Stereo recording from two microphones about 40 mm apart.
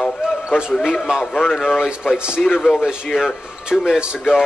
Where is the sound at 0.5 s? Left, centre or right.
Centre.